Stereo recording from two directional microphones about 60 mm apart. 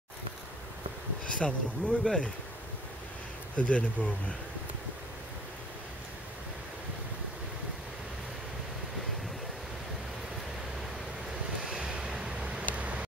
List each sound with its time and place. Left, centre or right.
1.2 s speech: centre
3.5 s speech: left
11.6 s vehicle: centre